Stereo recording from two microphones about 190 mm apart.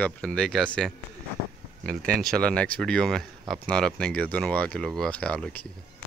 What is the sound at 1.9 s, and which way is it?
Speech, 50° right (ahead or behind).